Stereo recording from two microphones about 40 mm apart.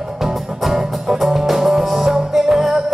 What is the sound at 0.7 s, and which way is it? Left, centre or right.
Music, centre.